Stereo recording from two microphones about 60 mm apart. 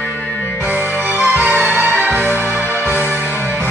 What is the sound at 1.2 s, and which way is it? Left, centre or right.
Music, right.